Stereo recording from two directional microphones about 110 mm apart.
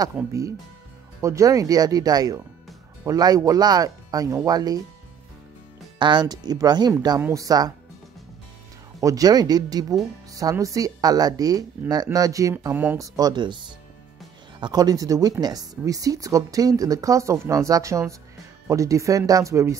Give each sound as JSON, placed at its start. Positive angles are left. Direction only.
{"t": 0.1, "sound": "speech", "side_deg": -25}
{"t": 5.9, "sound": "speech", "side_deg": -45}
{"t": 7.2, "sound": "speech", "side_deg": -20}
{"t": 7.4, "sound": "speech", "side_deg": -35}
{"t": 9.0, "sound": "speech", "side_deg": -35}